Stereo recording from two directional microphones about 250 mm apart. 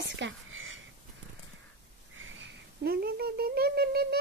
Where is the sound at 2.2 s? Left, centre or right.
Right.